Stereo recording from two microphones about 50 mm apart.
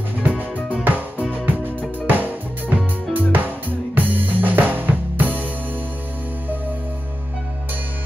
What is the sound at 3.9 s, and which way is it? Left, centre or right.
Music, right.